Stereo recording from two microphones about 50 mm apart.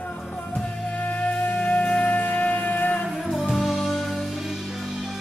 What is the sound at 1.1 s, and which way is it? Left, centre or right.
Music, left.